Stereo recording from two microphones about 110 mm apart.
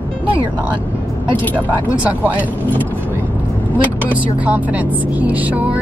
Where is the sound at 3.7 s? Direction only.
15° right (ahead or behind).